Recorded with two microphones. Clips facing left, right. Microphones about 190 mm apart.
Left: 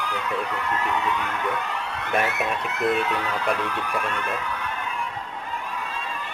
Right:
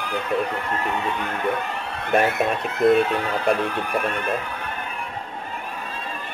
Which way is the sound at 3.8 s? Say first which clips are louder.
Right 3 dB; 55° right (ahead or behind).